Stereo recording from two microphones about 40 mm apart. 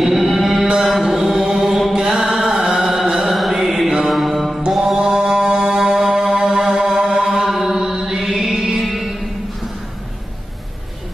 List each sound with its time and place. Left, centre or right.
0.0 s music: centre
0.8 s mantra: centre
1.5 s chant: centre
2.0 s mantra: centre
3.3 s mantra: centre
4.1 s music: centre
4.7 s mantra: centre
5.0 s music: centre
6.7 s mantra: centre
8.4 s music: centre